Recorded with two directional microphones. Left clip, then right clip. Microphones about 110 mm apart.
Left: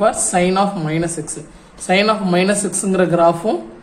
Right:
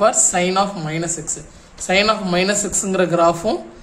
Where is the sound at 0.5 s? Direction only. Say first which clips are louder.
Left 2 dB; centre (ahead or behind).